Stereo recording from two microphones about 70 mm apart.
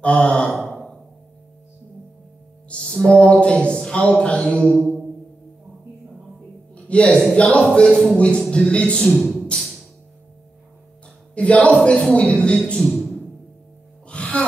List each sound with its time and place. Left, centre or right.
0.0 s a man's voice: centre
0.6 s a sound: centre
2.7 s music: centre
3.1 s speech: centre
4.7 s music: centre
6.7 s a sound: centre
7.3 s a man's voice: centre
9.1 s speech: centre
11.3 s a man's voice: centre
14.0 s music: centre